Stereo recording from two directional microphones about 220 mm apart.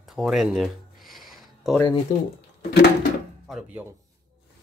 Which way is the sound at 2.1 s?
40° left (ahead or behind).